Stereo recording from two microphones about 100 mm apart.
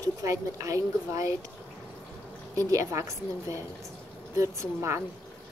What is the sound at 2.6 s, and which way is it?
Speech, 35° right (ahead or behind).